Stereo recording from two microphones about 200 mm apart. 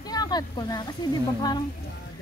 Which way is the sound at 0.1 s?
20° left (ahead or behind).